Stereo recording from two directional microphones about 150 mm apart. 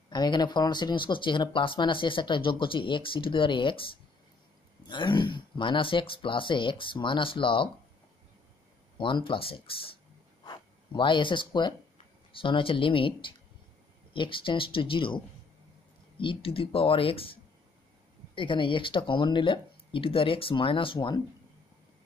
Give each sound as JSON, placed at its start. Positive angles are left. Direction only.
{"t": 0.1, "sound": "speech", "side_deg": 30}
{"t": 8.9, "sound": "speech", "side_deg": 35}
{"t": 10.4, "sound": "a sound", "side_deg": 30}
{"t": 12.3, "sound": "speech", "side_deg": 35}